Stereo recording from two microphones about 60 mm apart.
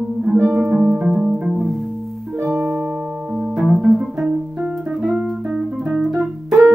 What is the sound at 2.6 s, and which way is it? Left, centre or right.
Music, centre.